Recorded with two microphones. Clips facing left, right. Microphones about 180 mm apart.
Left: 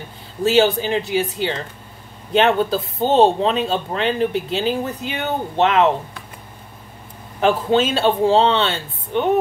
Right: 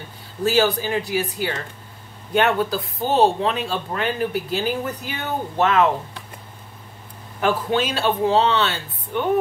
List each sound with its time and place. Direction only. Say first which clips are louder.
0.4 s speech: left 3 dB; 25° left (ahead or behind)
7.3 s speech: left 4 dB; 25° left (ahead or behind)